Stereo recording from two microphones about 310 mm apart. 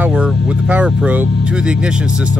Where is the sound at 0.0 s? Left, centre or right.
Centre.